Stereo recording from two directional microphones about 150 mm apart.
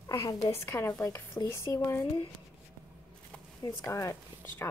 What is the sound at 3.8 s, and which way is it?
Speech, 20° left (ahead or behind).